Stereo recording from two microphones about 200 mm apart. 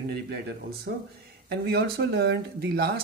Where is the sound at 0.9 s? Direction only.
55° right (ahead or behind).